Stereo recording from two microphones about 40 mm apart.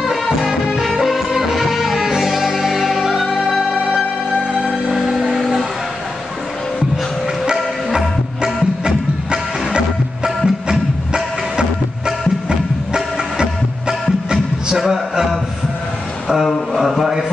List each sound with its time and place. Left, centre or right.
0.0 s music: centre
4.6 s music: centre
4.9 s a sound: centre
5.3 s music: centre
7.9 s music: centre
16.3 s a sound: centre